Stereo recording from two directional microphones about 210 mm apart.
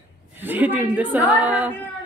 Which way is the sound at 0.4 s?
10° right (ahead or behind).